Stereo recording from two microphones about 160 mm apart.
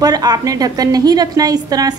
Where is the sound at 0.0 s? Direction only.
25° right (ahead or behind).